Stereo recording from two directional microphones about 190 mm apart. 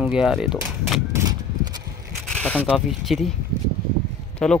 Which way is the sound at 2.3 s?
5° left (ahead or behind).